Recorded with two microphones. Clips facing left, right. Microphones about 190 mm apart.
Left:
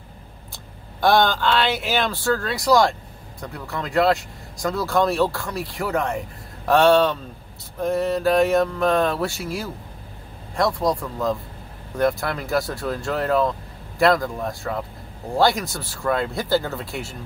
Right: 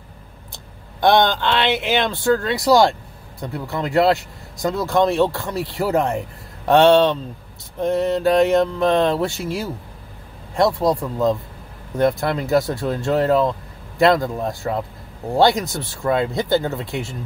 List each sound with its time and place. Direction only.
1.0 s speech: 20° right (ahead or behind)
9.4 s speech: centre (ahead or behind)
10.5 s speech: 25° right (ahead or behind)